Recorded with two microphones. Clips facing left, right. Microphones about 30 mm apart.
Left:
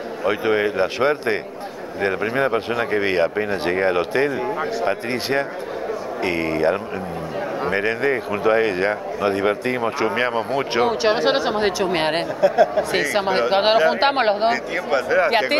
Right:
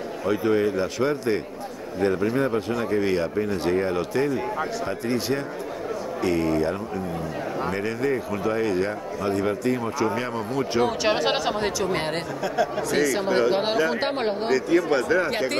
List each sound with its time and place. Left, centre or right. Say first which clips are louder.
0.2 s speech: left 3 dB; left
10.9 s speech: left 4 dB; centre
11.6 s speech: left 5 dB; left
12.4 s speech: left 10 dB; left
12.9 s speech: left 2 dB; left
14.5 s speech: right 1 dB; centre
15.2 s speech: left 7 dB; left